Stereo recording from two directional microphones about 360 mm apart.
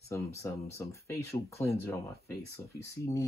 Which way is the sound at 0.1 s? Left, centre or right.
Centre.